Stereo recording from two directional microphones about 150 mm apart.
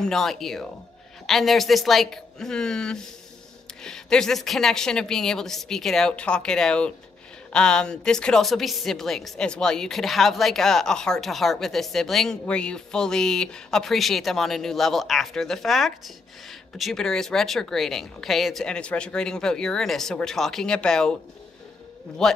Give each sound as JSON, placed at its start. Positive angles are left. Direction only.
{"t": 0.0, "sound": "a woman's voice", "side_deg": 0}
{"t": 22.2, "sound": "a woman's voice", "side_deg": 5}